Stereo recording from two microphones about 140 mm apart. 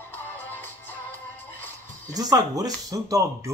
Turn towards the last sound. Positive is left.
turn(degrees=-25)  # may be behind; listen again after turning